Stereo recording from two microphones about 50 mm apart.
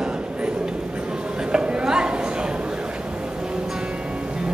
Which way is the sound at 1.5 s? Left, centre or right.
Centre.